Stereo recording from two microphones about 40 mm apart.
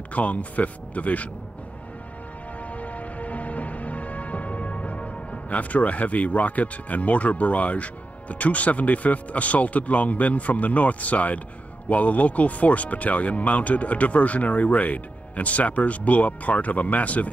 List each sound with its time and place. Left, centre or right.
0.1 s speech: left
2.6 s music: left
11.9 s speech: left